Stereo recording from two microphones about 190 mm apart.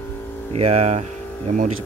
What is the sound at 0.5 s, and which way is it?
Speech, 35° right (ahead or behind).